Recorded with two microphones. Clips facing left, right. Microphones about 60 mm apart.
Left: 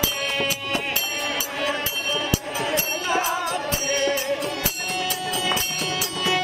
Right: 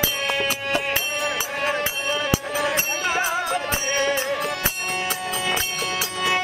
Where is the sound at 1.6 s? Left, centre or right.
Right.